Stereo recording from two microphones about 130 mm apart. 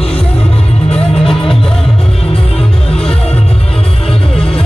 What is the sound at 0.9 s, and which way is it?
Music, 5° left (ahead or behind).